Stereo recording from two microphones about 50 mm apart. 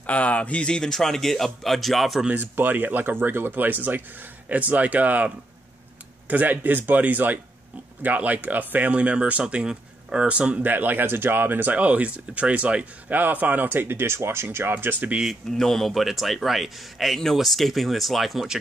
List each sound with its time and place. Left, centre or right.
0.0 s speech: left; by 2.2 s centre
2.3 s speech: right
10.6 s speech: right
13.1 s speech: right
15.5 s speech: centre